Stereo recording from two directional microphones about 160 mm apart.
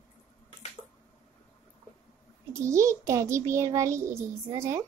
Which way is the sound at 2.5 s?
20° right (ahead or behind).